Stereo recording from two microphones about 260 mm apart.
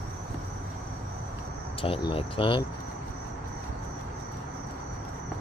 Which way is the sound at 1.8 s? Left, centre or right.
Centre.